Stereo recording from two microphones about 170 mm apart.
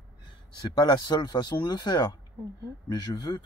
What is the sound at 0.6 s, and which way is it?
Speech, 25° left (ahead or behind).